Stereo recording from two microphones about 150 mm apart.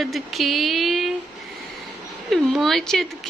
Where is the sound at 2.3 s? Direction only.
Centre (ahead or behind).